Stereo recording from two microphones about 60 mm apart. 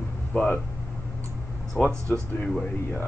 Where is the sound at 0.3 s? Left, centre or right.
Centre.